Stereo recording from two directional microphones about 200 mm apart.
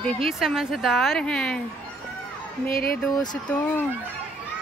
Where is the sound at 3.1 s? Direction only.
20° left (ahead or behind).